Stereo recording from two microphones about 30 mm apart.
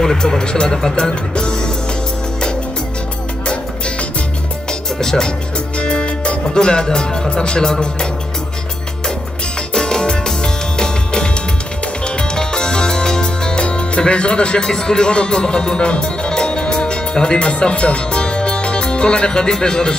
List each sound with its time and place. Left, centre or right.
0.0 s speech: centre
1.3 s music: left
5.0 s speech: centre
5.8 s music: left
7.6 s speech: left
9.8 s music: left
13.7 s speech: left